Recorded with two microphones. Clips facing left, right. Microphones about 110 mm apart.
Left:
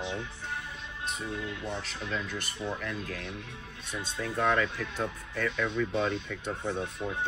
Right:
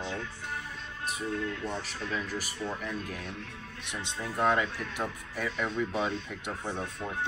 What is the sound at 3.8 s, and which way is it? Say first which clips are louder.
Speech: left 2 dB; 25° right (ahead or behind).